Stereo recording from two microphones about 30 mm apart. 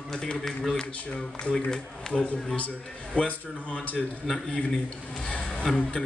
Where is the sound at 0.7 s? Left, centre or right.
Left.